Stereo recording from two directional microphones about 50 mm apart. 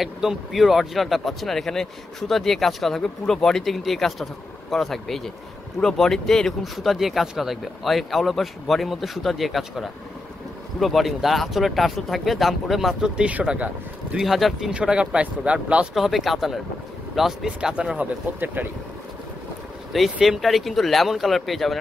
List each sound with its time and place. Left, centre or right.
0.0 s speech: centre
6.6 s speech: centre
13.0 s speech: right
14.2 s speech: centre
14.6 s speech: centre
15.9 s speech: centre
17.5 s speech: centre
18.4 s speech: right
19.9 s speech: centre